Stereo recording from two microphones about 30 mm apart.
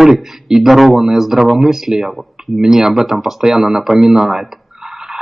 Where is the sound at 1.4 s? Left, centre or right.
Right.